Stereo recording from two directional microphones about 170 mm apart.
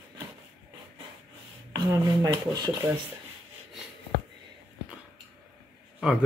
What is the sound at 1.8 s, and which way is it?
Speech, 20° right (ahead or behind).